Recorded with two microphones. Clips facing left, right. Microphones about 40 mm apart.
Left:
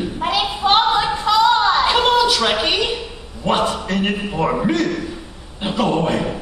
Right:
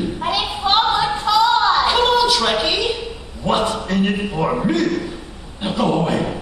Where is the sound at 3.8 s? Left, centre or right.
Centre.